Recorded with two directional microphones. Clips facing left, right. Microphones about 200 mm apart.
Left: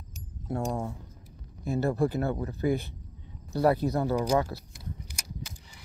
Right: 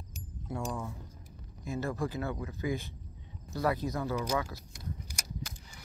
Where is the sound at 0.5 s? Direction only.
45° left (ahead or behind).